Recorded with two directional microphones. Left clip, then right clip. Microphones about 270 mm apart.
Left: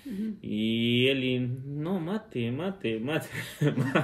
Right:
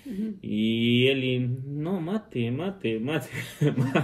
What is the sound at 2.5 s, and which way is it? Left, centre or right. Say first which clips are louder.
Speech: right 1 dB; centre.